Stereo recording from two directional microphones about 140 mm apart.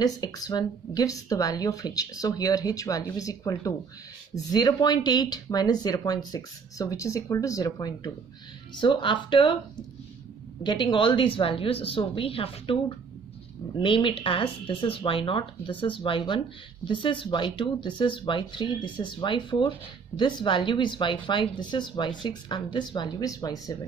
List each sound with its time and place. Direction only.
0.0 s speech: 25° left (ahead or behind)
10.6 s speech: 30° left (ahead or behind)
13.7 s speech: 40° left (ahead or behind)